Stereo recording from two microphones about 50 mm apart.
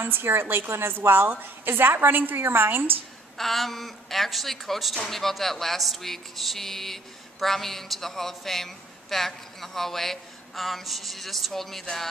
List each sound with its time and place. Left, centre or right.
0.0 s a woman's voice: right
3.3 s speech: centre